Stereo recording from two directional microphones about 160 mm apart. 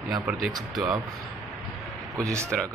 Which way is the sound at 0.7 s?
5° right (ahead or behind).